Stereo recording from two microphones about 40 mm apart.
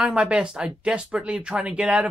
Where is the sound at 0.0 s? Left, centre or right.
Right.